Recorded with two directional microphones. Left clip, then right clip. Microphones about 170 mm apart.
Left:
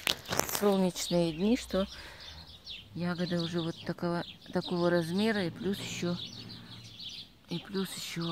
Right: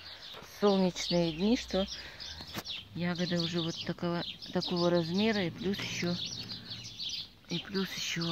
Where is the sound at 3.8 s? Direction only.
5° left (ahead or behind); by 6.1 s 20° left (ahead or behind).